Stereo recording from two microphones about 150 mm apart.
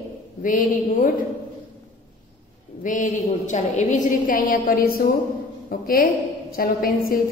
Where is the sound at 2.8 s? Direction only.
55° left (ahead or behind).